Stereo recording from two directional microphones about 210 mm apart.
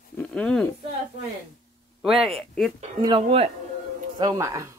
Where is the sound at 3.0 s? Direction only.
25° right (ahead or behind).